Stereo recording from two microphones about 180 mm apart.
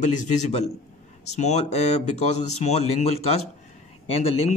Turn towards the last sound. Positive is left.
turn(degrees=35)  # may be behind; listen again after turning